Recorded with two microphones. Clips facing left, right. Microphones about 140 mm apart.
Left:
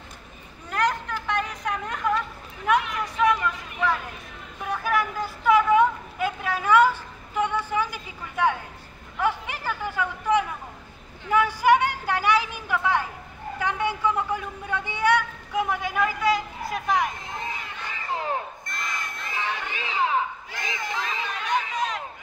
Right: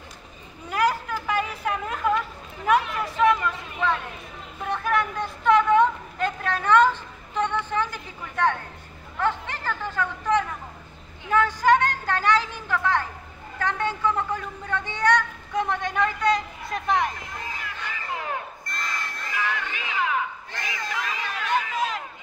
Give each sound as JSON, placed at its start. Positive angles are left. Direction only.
{"t": 0.7, "sound": "a sound", "side_deg": -5}
{"t": 18.1, "sound": "crowd", "side_deg": 30}
{"t": 18.8, "sound": "battle cry", "side_deg": 15}
{"t": 19.3, "sound": "music", "side_deg": 30}
{"t": 20.5, "sound": "battle cry", "side_deg": 20}
{"t": 21.5, "sound": "run", "side_deg": 0}